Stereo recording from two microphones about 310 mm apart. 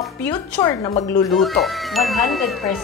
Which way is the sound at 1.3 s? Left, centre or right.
Centre.